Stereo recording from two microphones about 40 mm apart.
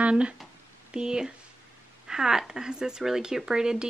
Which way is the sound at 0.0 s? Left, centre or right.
Right.